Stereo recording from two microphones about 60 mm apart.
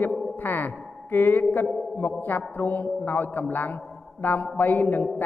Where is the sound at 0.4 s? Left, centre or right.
Left.